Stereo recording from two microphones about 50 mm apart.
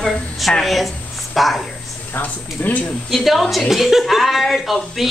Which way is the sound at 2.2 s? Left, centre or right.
Left.